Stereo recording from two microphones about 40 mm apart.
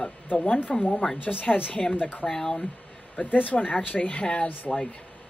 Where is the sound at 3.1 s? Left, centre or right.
Left.